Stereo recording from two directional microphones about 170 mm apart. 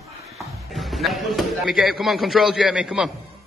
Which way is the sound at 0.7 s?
Centre (ahead or behind).